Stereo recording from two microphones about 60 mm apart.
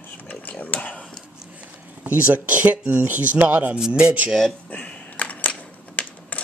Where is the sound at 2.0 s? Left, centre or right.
Right.